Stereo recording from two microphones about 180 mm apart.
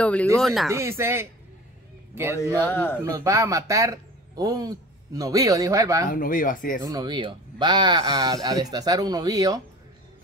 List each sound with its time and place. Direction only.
0.0 s speech: 5° left (ahead or behind)
0.7 s speech: 15° right (ahead or behind)
2.4 s speech: 15° left (ahead or behind)
3.0 s speech: 15° right (ahead or behind)
6.0 s speech: 50° left (ahead or behind)
6.8 s speech: 20° right (ahead or behind)